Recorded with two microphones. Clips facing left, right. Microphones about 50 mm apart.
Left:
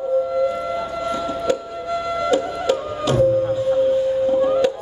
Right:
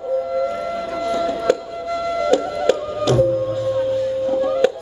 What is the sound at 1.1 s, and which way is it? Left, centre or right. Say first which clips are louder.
Music: right 4 dB; left.